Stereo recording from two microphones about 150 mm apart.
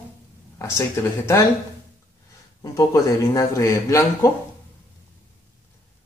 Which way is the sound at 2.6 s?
20° left (ahead or behind).